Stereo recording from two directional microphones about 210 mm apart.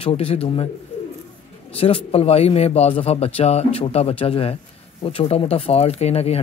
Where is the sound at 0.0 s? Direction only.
25° left (ahead or behind).